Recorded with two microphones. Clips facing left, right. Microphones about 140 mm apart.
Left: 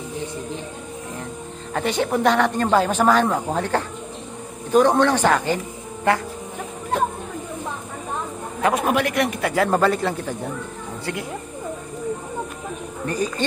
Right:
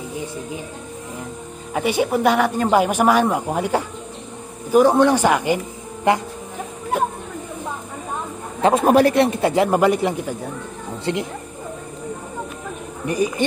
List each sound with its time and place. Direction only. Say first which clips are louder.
1.7 s speech: right 2 dB; 10° right (ahead or behind)
8.8 s speech: right 6 dB; 35° right (ahead or behind)
9.7 s speech: right 2 dB; 15° right (ahead or behind)
11.1 s speech: right 6 dB; 25° right (ahead or behind)
13.0 s speech: right 4 dB; 15° right (ahead or behind)